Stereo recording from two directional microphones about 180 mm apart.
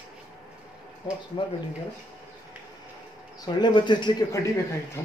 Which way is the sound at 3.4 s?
25° left (ahead or behind).